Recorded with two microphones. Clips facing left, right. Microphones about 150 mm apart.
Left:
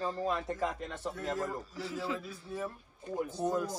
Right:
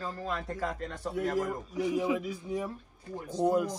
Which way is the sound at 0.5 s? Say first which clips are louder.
Right 1 dB; centre (ahead or behind).